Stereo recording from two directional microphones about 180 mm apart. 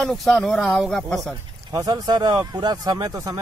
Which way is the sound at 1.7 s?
20° right (ahead or behind).